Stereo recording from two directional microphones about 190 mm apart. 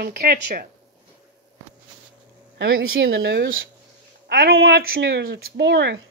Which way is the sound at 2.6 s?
75° right (ahead or behind).